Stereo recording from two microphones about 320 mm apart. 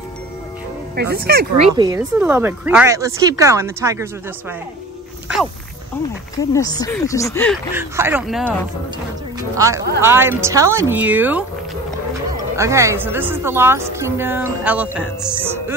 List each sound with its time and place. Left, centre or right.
0.9 s speech: right
1.8 s a woman's voice: centre
6.5 s speech: centre
7.7 s speech: centre
9.6 s a woman's voice: centre
12.5 s a woman's voice: centre